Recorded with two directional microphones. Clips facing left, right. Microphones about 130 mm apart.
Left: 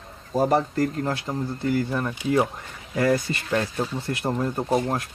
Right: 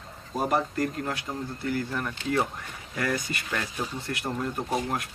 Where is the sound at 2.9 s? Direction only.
30° left (ahead or behind).